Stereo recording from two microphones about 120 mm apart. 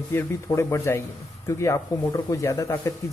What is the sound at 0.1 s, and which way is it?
Speech, 20° left (ahead or behind).